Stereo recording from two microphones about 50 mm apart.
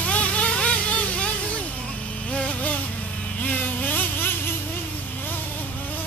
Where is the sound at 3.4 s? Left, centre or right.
Left.